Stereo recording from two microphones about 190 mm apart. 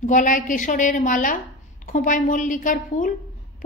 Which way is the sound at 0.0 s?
45° left (ahead or behind).